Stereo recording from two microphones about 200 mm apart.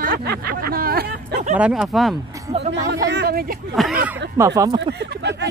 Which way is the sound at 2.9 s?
60° right (ahead or behind).